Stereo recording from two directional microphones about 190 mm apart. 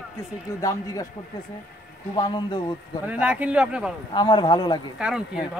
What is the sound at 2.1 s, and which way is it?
Speech, 25° left (ahead or behind).